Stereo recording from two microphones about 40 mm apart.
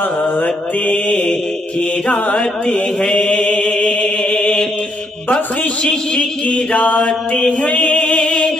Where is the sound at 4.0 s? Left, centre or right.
Left.